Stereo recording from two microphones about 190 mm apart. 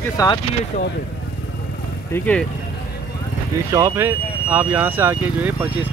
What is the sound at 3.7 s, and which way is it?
Speech, 15° right (ahead or behind).